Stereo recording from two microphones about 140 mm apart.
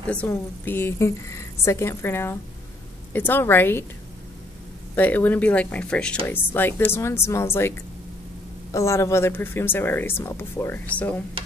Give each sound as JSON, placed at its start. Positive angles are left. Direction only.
{"t": 0.1, "sound": "a woman's voice", "side_deg": 10}
{"t": 4.9, "sound": "speech", "side_deg": 10}
{"t": 8.7, "sound": "speech", "side_deg": 20}